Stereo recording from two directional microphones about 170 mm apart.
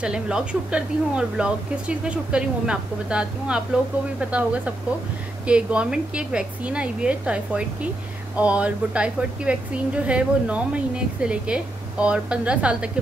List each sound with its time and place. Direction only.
0.0 s speech: 5° right (ahead or behind)